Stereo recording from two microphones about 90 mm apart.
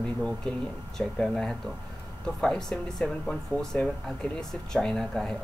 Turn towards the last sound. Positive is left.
turn(degrees=5)  # may be behind; listen again after turning